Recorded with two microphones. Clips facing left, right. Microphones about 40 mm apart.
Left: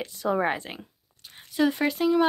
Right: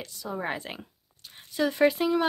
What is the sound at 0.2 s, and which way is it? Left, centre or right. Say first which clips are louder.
Speech: left 10 dB; left.